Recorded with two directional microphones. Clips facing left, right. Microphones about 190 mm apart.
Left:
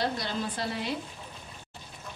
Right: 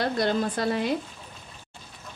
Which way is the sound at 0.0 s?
55° right (ahead or behind).